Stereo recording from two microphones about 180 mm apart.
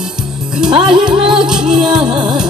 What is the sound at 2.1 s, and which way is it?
Music, 25° right (ahead or behind).